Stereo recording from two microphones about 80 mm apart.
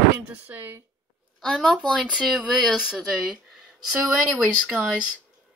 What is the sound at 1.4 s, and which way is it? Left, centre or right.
Speech, centre.